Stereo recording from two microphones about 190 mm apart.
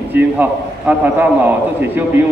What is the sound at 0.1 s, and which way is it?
A man's voice, 10° right (ahead or behind).